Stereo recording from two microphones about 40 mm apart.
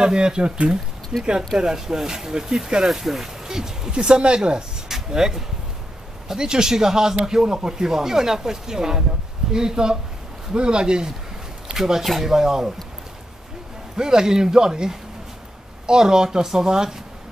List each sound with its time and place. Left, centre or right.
0.0 s speech: centre
11.7 s speech: centre
13.9 s speech: centre